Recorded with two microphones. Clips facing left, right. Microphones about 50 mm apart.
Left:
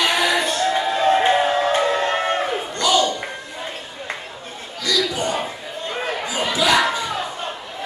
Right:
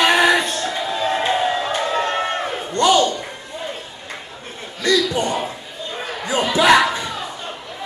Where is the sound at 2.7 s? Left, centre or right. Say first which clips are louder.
Right 4 dB; right.